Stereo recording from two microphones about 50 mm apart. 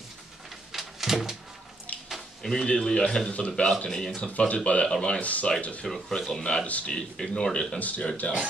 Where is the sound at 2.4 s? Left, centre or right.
Centre.